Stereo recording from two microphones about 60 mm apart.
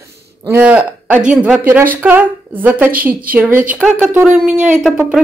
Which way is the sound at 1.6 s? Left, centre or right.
Right.